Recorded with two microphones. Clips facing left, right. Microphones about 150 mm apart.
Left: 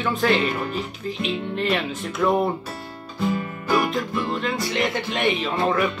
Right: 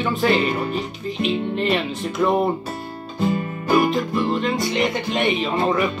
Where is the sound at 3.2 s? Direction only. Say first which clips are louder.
Right 2 dB; 20° right (ahead or behind).